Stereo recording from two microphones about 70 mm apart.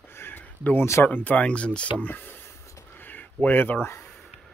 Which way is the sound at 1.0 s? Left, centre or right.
Left.